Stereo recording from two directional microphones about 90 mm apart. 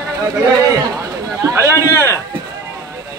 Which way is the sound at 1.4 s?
35° right (ahead or behind).